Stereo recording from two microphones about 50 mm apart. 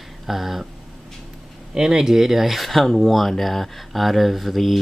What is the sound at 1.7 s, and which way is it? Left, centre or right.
Speech, centre.